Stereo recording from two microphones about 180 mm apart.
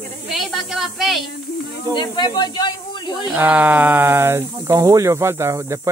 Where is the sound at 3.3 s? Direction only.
10° right (ahead or behind).